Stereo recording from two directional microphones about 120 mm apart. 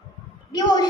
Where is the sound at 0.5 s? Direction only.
35° left (ahead or behind).